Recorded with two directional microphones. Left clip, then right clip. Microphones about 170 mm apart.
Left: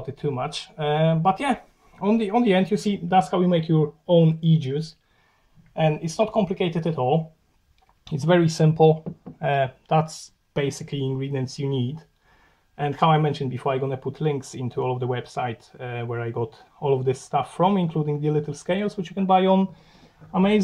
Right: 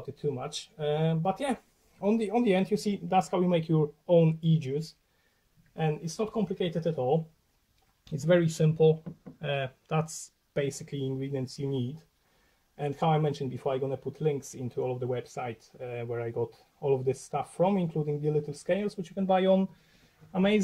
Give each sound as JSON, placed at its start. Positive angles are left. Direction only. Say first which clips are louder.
{"t": 0.1, "sound": "speech", "louder": "left 6 dB", "side_deg": 5}
{"t": 2.6, "sound": "speech", "louder": "left 5 dB", "side_deg": -35}
{"t": 2.9, "sound": "speech", "louder": "left 8 dB", "side_deg": 0}
{"t": 6.1, "sound": "speech", "louder": "left 9 dB", "side_deg": 15}
{"t": 6.9, "sound": "speech", "louder": "left 5 dB", "side_deg": 5}
{"t": 8.3, "sound": "speech", "louder": "left 5 dB", "side_deg": 15}